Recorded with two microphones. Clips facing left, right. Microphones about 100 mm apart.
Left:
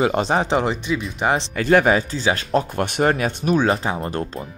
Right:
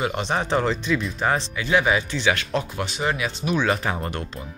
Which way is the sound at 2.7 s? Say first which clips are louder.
Left 6 dB; 55° left (ahead or behind).